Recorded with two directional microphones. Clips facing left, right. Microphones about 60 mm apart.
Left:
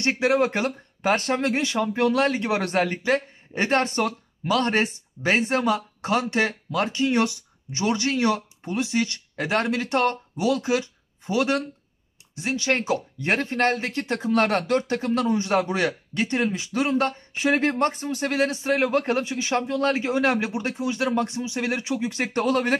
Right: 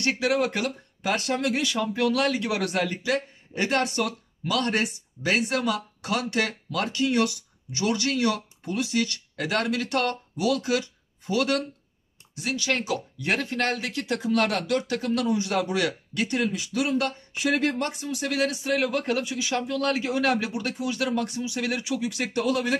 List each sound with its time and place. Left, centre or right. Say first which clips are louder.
0.0 s speech: left 3 dB; left